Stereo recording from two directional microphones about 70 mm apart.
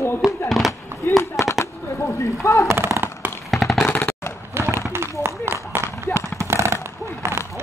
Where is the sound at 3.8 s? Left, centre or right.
Left.